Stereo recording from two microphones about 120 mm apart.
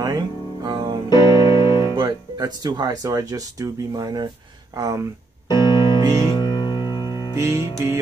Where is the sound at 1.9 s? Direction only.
35° right (ahead or behind).